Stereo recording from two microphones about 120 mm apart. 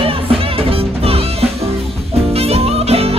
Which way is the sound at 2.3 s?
55° right (ahead or behind).